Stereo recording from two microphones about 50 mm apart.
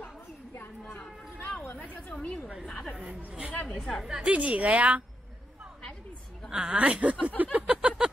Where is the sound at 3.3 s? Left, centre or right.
Right.